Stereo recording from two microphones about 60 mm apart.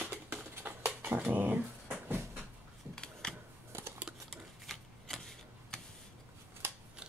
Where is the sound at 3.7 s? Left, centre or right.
Right.